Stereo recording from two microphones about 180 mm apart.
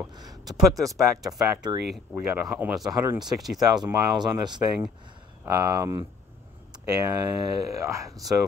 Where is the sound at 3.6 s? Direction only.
25° right (ahead or behind).